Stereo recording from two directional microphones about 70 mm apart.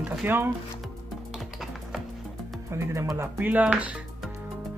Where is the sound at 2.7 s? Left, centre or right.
Right.